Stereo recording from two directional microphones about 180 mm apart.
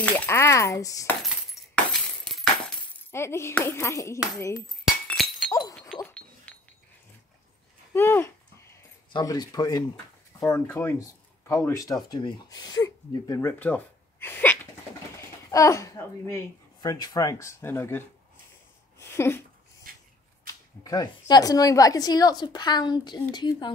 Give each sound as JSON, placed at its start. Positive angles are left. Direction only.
{"t": 0.0, "sound": "speech", "side_deg": 10}
{"t": 3.1, "sound": "speech", "side_deg": 15}
{"t": 4.8, "sound": "glass", "side_deg": 0}
{"t": 5.5, "sound": "chink", "side_deg": 20}
{"t": 6.5, "sound": "a sound", "side_deg": 10}
{"t": 7.9, "sound": "a woman's voice", "side_deg": 15}
{"t": 18.9, "sound": "a sound", "side_deg": 15}
{"t": 19.9, "sound": "a sound", "side_deg": -50}
{"t": 20.8, "sound": "a woman's voice", "side_deg": 20}